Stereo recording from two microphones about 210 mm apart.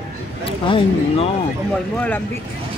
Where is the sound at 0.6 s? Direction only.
25° left (ahead or behind).